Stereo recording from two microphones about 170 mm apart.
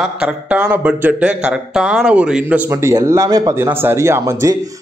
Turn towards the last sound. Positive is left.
turn(degrees=-20)  # may be behind; listen again after turning